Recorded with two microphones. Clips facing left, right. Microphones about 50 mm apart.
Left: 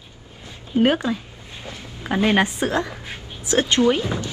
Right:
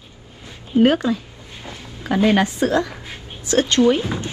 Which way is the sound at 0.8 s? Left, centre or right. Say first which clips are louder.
Right 3 dB; left.